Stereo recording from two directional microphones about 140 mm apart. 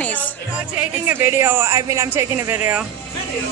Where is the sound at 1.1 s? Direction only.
15° right (ahead or behind).